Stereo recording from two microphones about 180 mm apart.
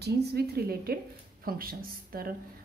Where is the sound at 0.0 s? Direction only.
65° right (ahead or behind).